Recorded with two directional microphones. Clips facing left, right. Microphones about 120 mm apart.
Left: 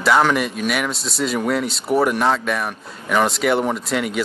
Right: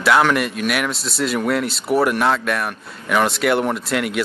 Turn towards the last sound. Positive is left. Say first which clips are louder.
# right 1 dB
turn(degrees=0)  # may be behind; listen again after turning